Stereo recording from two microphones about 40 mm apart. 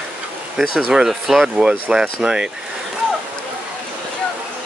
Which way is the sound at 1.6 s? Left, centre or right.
Right.